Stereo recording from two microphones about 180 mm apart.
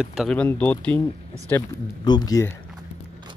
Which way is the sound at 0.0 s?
Centre (ahead or behind).